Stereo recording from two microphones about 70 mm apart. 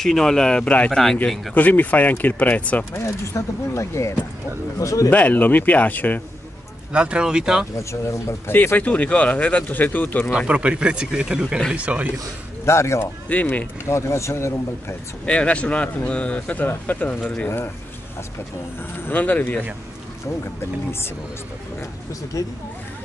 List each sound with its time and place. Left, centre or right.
0.0 s speech: centre
2.8 s speech: left
5.1 s speech: left
6.9 s speech: centre
7.7 s speech: left
8.5 s speech: left
10.3 s speech: centre
12.6 s speech: left
13.3 s speech: left
13.8 s speech: left
15.2 s speech: centre
19.0 s speech: left